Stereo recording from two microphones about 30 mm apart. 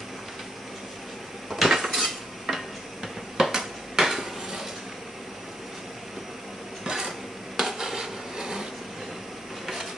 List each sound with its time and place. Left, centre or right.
1.5 s cutlery: centre
2.0 s dishes: centre
6.8 s a sound: right
7.1 s dishes: centre